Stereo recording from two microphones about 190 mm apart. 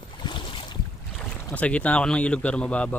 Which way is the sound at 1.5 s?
5° left (ahead or behind).